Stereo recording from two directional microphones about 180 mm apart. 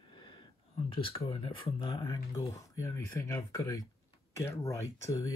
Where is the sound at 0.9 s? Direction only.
30° left (ahead or behind).